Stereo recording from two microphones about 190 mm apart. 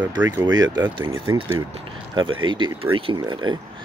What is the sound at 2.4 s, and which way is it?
Speech, 25° right (ahead or behind).